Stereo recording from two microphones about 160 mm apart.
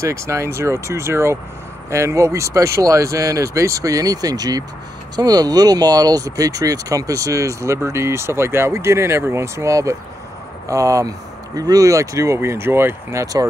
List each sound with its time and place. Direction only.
0.0 s speech: 20° right (ahead or behind)